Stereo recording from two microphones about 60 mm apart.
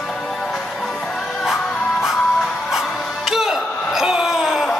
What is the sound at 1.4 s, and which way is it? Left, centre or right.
Music, centre.